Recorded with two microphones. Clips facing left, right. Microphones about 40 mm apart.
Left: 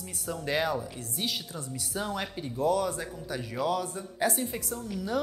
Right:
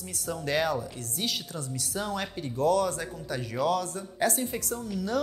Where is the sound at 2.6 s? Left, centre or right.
Centre.